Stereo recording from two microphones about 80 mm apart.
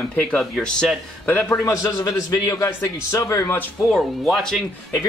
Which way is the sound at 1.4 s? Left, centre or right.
Left.